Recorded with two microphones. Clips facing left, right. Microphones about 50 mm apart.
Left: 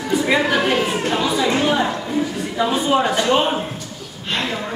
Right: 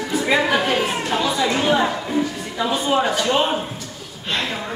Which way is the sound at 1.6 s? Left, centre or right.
Centre.